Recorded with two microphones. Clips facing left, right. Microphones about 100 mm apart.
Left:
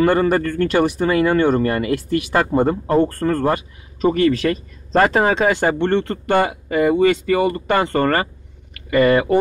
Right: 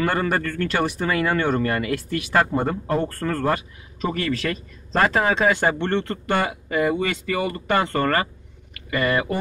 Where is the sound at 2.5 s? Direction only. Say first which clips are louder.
Left 7 dB; 35° left (ahead or behind).